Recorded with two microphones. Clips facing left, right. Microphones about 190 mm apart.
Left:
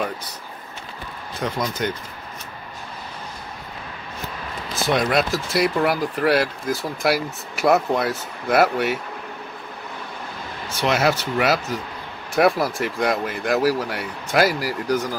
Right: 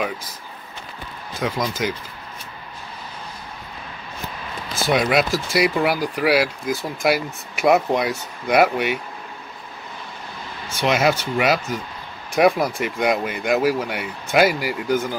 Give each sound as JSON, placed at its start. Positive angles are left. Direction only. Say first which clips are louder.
{"t": 1.4, "sound": "speech", "louder": "right 1 dB", "side_deg": -5}
{"t": 4.9, "sound": "speech", "louder": "right 2 dB", "side_deg": -5}
{"t": 10.8, "sound": "speech", "louder": "right 1 dB", "side_deg": 0}